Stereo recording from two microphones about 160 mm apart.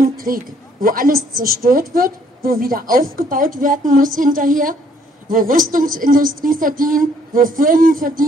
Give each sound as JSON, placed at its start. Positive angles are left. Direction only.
{"t": 0.8, "sound": "a woman's voice", "side_deg": -60}